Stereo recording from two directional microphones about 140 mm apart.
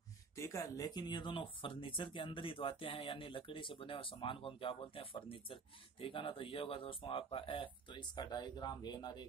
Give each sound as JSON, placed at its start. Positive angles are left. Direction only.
{"t": 0.4, "sound": "speech", "side_deg": 20}